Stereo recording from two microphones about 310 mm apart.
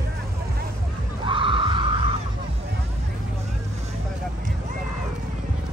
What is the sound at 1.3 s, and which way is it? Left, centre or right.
Music, centre.